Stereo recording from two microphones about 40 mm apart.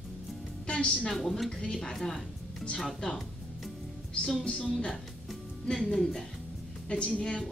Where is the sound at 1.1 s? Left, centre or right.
Centre.